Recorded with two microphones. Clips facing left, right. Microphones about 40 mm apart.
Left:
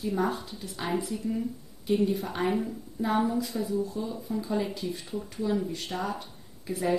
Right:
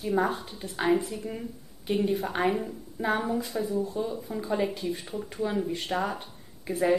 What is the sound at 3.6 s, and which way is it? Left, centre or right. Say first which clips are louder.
A woman's voice: right 1 dB; right.